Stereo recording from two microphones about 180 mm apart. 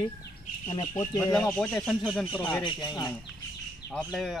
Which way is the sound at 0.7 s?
20° left (ahead or behind).